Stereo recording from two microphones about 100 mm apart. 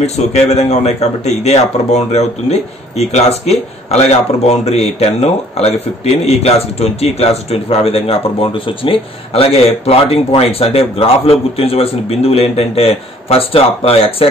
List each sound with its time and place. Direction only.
0.0 s a man's voice: 90° left